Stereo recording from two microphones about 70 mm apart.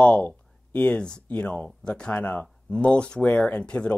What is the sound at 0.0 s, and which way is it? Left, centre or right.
Speech, centre.